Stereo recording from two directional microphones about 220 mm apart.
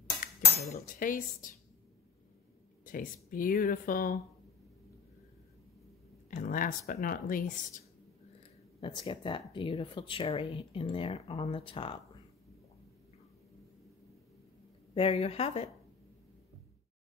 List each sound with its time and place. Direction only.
0.2 s dishes: 35° left (ahead or behind)
2.8 s speech: 40° left (ahead or behind)
6.3 s speech: 35° left (ahead or behind)
8.8 s speech: 25° left (ahead or behind)
15.0 s speech: 25° left (ahead or behind)